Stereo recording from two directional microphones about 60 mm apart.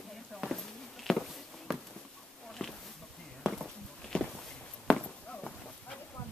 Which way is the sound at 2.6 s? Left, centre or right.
Centre.